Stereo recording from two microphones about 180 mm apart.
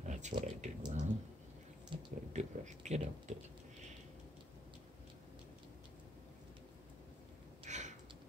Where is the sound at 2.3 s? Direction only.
40° right (ahead or behind).